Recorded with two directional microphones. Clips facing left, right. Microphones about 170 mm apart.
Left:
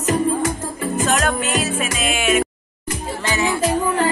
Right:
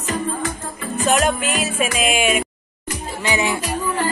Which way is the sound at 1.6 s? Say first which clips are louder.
Right 2 dB; 10° right (ahead or behind).